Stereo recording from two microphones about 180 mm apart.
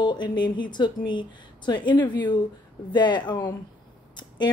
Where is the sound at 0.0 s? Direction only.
25° left (ahead or behind).